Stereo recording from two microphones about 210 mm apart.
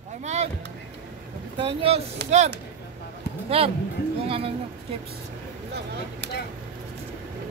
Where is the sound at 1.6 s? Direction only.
25° right (ahead or behind).